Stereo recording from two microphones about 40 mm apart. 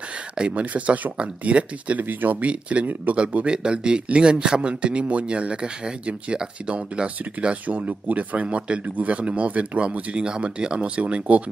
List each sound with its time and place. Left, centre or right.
0.4 s speech: right
7.6 s speech: right